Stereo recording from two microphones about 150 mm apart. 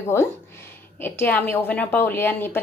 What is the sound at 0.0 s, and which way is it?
A woman's voice, 15° left (ahead or behind).